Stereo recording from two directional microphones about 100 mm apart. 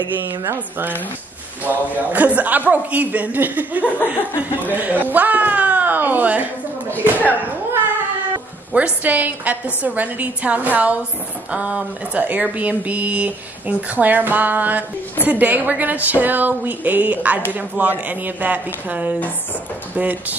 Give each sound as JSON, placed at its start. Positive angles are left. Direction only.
{"t": 0.5, "sound": "speech", "side_deg": -20}